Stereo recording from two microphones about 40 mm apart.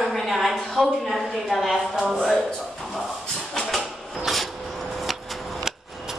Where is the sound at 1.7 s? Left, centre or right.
Centre.